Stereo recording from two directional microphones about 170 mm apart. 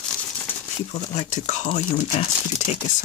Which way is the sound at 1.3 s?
40° left (ahead or behind).